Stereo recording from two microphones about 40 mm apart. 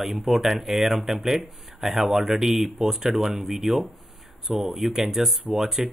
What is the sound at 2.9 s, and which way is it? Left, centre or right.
Speech, centre.